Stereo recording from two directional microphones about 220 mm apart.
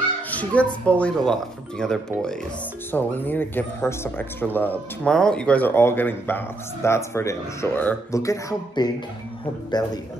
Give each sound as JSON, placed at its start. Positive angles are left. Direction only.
{"t": 0.3, "sound": "speech", "side_deg": 5}